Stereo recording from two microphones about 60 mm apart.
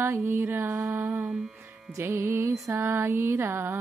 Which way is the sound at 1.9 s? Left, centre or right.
Right.